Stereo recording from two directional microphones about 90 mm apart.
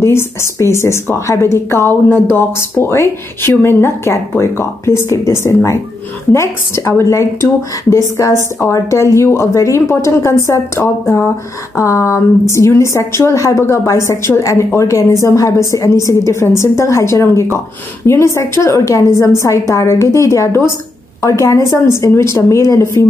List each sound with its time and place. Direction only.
0.0 s a woman's voice: 30° left (ahead or behind)